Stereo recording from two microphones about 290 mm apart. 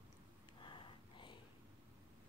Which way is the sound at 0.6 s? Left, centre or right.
Centre.